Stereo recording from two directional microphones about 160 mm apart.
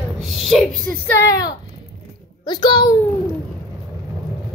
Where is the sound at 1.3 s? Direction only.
20° left (ahead or behind).